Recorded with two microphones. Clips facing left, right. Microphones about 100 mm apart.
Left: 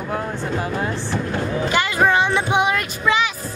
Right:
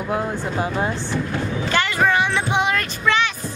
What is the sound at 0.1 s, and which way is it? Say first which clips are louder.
Speech: right 1 dB; 20° right (ahead or behind).